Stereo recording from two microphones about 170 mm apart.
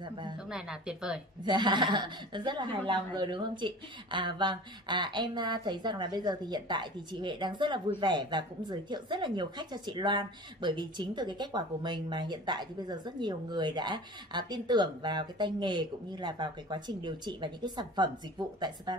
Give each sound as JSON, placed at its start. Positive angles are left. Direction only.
{"t": 0.0, "sound": "a woman's voice", "side_deg": -25}
{"t": 0.5, "sound": "speech", "side_deg": -5}
{"t": 1.4, "sound": "speech", "side_deg": -25}